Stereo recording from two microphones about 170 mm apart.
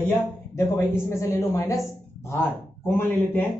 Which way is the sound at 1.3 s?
15° left (ahead or behind).